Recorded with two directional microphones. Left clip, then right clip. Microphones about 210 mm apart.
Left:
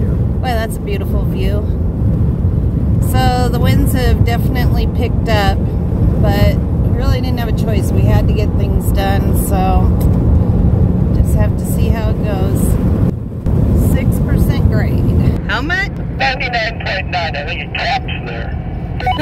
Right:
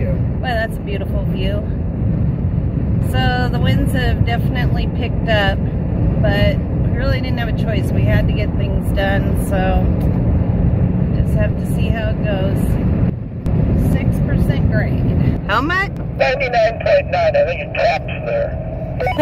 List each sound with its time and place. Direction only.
3.2 s speech: 15° left (ahead or behind)
6.2 s speech: 15° left (ahead or behind)
7.6 s speech: 15° left (ahead or behind)
9.0 s a sound: 20° left (ahead or behind)
11.3 s speech: 15° left (ahead or behind)
14.5 s vehicle: 15° left (ahead or behind)
16.2 s speech: 5° right (ahead or behind)